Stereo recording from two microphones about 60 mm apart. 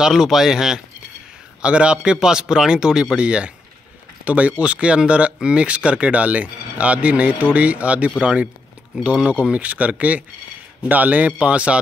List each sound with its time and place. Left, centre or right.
0.0 s speech: centre